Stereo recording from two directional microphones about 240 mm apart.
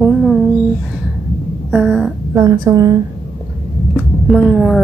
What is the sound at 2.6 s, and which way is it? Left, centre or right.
Speech, centre.